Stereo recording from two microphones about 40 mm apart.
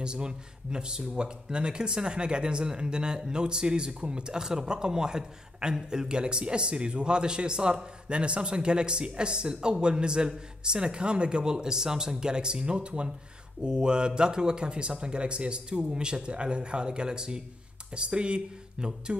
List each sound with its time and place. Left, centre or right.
0.0 s speech: right